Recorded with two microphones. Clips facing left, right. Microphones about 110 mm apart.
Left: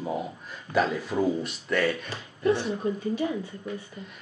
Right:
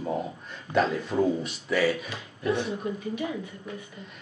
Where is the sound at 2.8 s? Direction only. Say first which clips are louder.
Left 3 dB; 35° left (ahead or behind).